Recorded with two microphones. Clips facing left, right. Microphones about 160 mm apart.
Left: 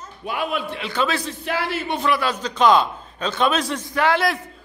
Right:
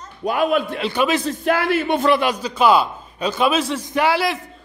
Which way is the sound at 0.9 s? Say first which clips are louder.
Right 3 dB; 15° right (ahead or behind).